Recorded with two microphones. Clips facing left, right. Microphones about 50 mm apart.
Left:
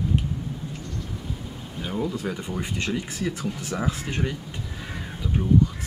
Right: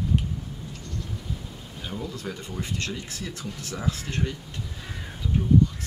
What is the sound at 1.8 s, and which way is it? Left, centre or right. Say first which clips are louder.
Speech: left 7 dB; centre.